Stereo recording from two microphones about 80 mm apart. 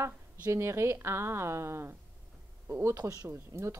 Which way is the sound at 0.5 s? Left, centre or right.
Right.